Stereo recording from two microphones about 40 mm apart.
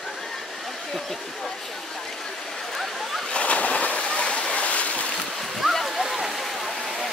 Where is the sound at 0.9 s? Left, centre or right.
Centre.